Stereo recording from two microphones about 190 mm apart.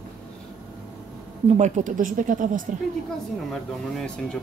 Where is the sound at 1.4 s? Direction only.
35° right (ahead or behind).